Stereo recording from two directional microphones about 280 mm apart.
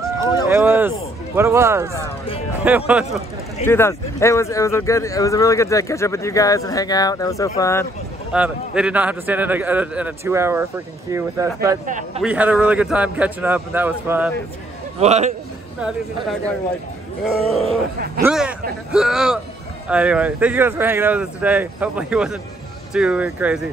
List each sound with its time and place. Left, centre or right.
0.5 s a sound: centre
2.0 s music: centre
2.6 s speech: centre
3.6 s a man's voice: centre
8.3 s a man's voice: centre
11.8 s speech: right
12.2 s speech: centre
15.0 s speech: right
17.9 s speech: right
18.2 s speech: centre